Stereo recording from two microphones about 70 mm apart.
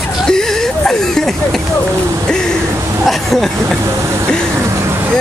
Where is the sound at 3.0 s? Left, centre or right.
Centre.